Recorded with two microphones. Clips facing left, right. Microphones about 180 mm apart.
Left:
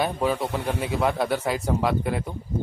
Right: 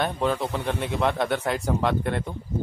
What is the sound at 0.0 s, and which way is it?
Speech, 5° left (ahead or behind).